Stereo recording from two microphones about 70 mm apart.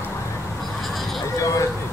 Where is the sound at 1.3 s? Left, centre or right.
Left.